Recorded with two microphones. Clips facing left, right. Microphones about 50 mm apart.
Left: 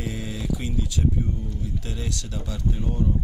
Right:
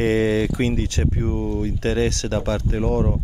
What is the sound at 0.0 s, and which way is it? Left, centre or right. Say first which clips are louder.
Speech: right 14 dB; right.